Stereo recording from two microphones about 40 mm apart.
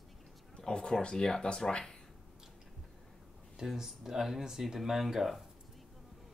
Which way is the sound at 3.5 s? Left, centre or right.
Centre.